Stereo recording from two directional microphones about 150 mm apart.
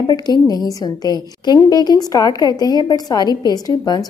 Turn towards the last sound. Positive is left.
turn(degrees=25)  # may be behind; listen again after turning